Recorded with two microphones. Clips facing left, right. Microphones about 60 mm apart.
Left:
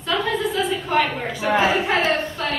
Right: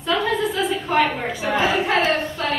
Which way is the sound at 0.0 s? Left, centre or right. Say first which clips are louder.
Right 1 dB; centre.